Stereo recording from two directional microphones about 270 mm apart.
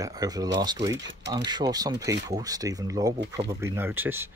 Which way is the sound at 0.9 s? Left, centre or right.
Right.